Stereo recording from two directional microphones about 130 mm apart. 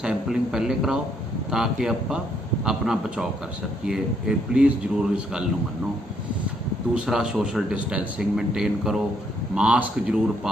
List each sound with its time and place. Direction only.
0.0 s a man's voice: 5° right (ahead or behind)
6.9 s a man's voice: 5° right (ahead or behind)